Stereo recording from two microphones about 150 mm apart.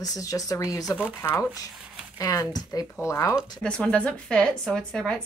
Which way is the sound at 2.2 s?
25° left (ahead or behind).